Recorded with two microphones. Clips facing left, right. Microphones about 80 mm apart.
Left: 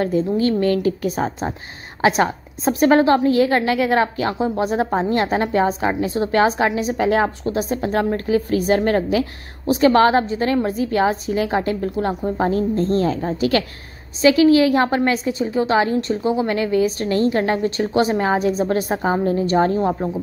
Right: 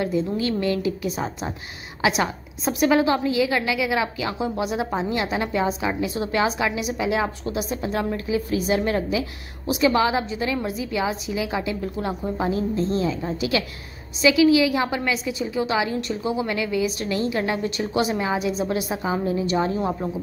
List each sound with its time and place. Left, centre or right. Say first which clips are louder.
0.0 s a woman's voice: left 5 dB; left